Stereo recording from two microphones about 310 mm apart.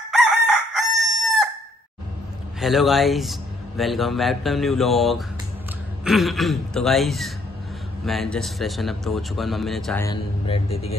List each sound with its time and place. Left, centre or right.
0.1 s chicken: centre
2.6 s speech: centre
10.4 s speech: centre